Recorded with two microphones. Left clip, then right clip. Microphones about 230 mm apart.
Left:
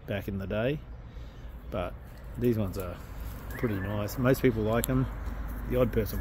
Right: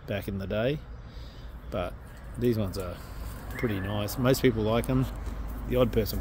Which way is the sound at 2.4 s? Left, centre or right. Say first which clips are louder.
Right 1 dB; centre.